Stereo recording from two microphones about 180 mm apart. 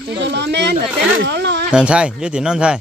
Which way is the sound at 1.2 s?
70° right (ahead or behind).